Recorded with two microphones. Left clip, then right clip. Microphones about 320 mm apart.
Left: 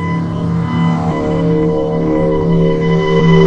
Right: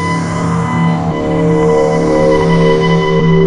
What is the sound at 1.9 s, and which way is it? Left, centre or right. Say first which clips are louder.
Music: right 4 dB; right.